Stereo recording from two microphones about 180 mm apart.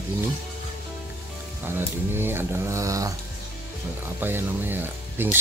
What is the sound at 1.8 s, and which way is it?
Speech, 10° right (ahead or behind).